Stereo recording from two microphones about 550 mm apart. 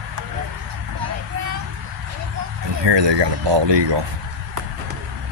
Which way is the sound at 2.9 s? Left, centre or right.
Right.